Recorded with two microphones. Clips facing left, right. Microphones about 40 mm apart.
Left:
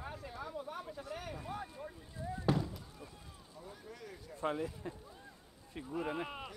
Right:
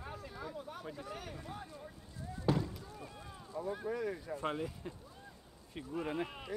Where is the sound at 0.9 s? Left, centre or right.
Centre.